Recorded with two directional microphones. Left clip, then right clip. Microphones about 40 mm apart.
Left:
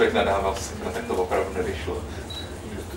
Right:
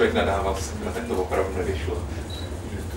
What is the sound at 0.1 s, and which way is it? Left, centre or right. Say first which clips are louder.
Speech: left 1 dB; centre.